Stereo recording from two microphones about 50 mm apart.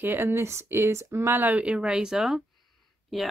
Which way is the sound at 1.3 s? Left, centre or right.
Right.